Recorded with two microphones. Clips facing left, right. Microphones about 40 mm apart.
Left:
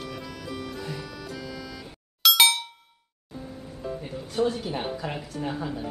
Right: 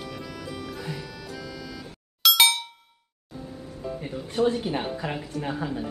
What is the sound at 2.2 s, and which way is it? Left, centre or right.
Clang, centre.